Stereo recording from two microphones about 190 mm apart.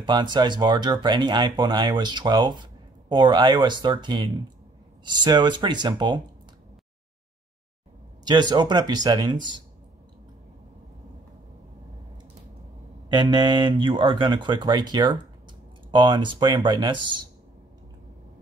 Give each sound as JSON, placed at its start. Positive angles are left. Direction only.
{"t": 0.0, "sound": "speech", "side_deg": -25}
{"t": 8.3, "sound": "speech", "side_deg": -20}
{"t": 13.1, "sound": "speech", "side_deg": -25}